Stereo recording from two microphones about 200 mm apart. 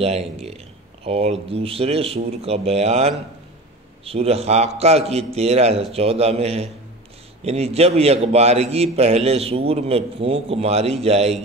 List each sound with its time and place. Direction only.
0.0 s a man's voice: 30° right (ahead or behind)